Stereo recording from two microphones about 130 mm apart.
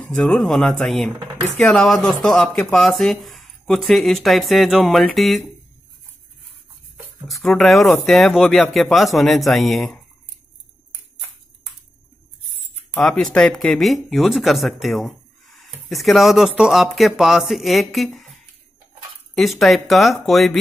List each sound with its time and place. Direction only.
0.0 s speech: 5° left (ahead or behind)
7.2 s speech: centre (ahead or behind)
12.9 s speech: 5° left (ahead or behind)
19.3 s speech: centre (ahead or behind)